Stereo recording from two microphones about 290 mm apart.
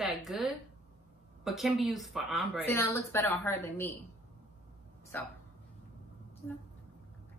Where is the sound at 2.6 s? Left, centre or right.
Centre.